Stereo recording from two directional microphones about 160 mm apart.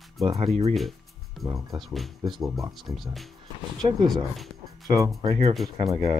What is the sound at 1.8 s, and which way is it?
Speech, centre (ahead or behind).